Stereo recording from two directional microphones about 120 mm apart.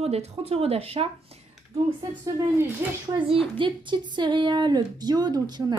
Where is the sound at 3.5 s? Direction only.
40° right (ahead or behind).